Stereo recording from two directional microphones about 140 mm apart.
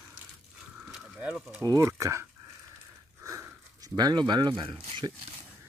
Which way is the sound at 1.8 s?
20° right (ahead or behind).